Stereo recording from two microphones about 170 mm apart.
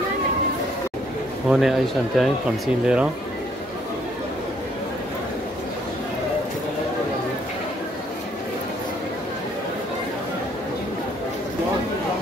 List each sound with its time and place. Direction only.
1.5 s speech: centre (ahead or behind)